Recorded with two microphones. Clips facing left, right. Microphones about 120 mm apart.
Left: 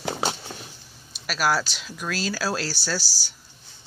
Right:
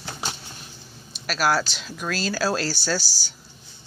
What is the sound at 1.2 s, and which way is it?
Speech, 5° left (ahead or behind).